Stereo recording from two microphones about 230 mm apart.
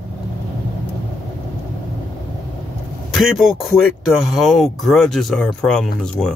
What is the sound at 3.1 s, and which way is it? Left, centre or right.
Speech, centre.